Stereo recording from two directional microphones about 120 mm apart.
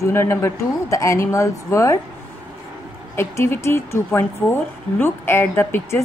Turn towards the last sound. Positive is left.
turn(degrees=20)  # may be behind; listen again after turning